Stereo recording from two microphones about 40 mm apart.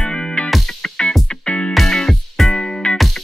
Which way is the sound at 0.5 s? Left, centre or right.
Centre.